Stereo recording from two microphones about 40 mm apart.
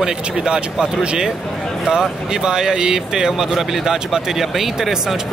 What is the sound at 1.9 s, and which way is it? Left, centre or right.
Speech, centre.